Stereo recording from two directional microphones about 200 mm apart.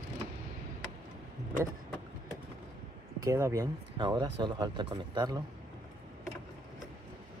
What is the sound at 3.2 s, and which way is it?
Speech, 15° right (ahead or behind).